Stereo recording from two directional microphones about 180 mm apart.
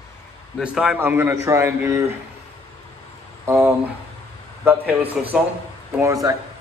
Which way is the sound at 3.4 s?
15° right (ahead or behind).